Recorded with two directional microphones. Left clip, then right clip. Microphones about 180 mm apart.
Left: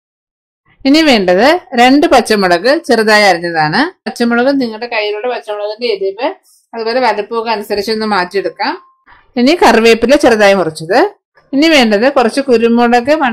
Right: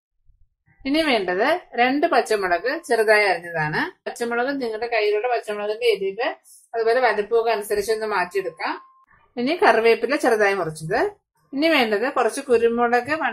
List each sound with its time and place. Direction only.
0.8 s speech: 50° left (ahead or behind)
6.7 s speech: 35° left (ahead or behind)